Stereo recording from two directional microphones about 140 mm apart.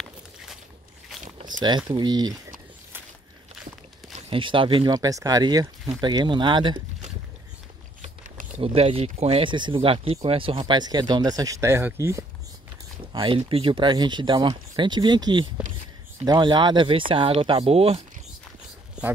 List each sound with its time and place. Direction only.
1.2 s a sound: 70° right (ahead or behind)
1.9 s speech: 30° right (ahead or behind)
4.3 s speech: 40° right (ahead or behind)
8.5 s speech: 45° right (ahead or behind); by 12.3 s 20° right (ahead or behind)
13.0 s speech: 35° right (ahead or behind)